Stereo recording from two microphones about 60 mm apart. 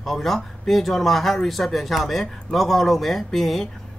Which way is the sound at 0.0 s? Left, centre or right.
Centre.